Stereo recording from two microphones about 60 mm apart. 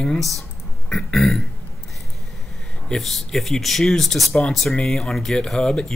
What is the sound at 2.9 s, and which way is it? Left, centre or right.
Speech, centre.